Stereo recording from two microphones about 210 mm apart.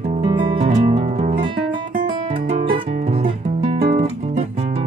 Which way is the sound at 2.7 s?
25° right (ahead or behind).